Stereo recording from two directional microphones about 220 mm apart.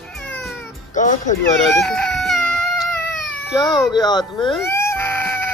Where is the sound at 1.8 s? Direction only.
Centre (ahead or behind).